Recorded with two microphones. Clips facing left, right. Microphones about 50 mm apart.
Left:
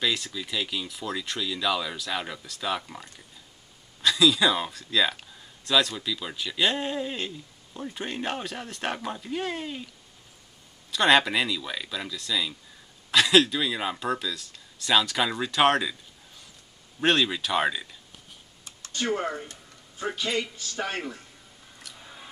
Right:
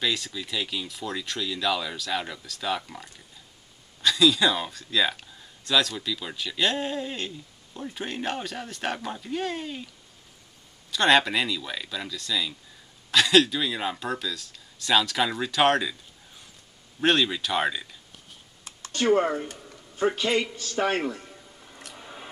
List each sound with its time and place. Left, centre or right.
0.0 s speech: centre
10.9 s speech: centre
17.0 s speech: centre
19.0 s speech: right
21.9 s squish: right